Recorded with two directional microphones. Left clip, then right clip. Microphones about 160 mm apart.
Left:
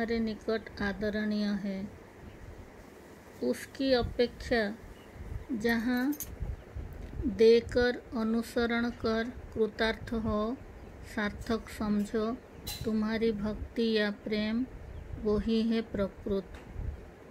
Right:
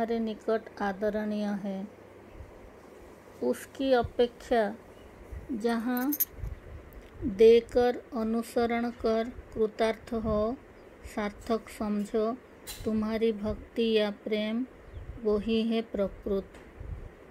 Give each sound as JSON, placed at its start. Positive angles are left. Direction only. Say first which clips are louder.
{"t": 0.0, "sound": "speech", "louder": "right 2 dB", "side_deg": -10}
{"t": 3.3, "sound": "speech", "louder": "right 2 dB", "side_deg": -15}
{"t": 7.3, "sound": "speech", "louder": "right 3 dB", "side_deg": -10}
{"t": 15.7, "sound": "speech", "louder": "right 2 dB", "side_deg": -10}